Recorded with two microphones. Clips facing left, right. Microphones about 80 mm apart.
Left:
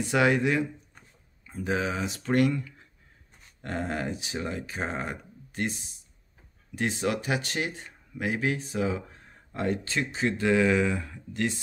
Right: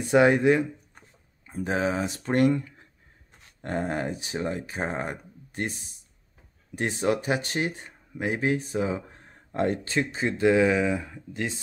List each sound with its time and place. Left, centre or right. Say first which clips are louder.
0.1 s speech: right 5 dB; right